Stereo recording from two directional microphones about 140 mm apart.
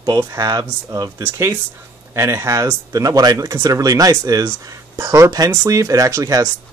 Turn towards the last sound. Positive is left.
turn(degrees=-20)  # may be behind; listen again after turning